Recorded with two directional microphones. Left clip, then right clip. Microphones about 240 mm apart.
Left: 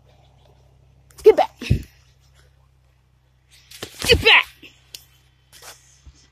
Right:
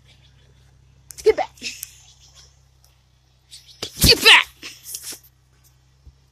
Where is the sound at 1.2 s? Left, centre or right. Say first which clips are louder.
Left 5 dB; left.